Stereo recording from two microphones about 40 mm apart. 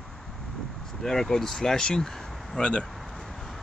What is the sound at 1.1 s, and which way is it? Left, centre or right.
Speech, centre.